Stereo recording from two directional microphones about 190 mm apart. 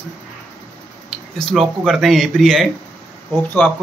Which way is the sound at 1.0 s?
Centre (ahead or behind).